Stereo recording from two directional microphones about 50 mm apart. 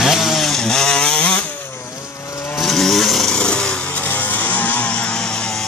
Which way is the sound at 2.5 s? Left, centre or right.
Centre.